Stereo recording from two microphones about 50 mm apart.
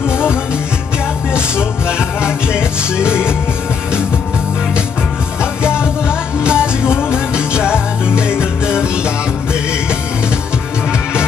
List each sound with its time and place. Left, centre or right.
1.3 s music: centre
6.0 s music: centre